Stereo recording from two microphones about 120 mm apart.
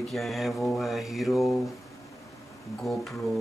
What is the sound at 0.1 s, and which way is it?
Speech, centre (ahead or behind).